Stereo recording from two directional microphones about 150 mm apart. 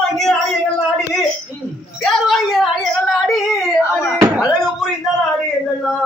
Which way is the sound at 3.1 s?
Centre (ahead or behind).